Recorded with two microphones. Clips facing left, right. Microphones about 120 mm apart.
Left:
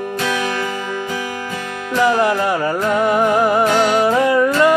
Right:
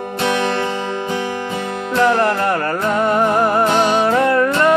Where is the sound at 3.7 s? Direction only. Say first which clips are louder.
Even; 20° right (ahead or behind).